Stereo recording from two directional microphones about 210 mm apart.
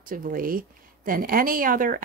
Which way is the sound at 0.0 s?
40° right (ahead or behind).